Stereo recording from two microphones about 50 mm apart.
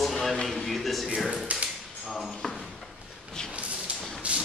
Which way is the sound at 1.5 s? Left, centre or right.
Right.